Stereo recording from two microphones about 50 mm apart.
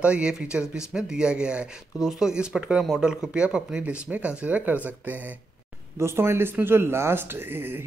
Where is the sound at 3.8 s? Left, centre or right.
Right.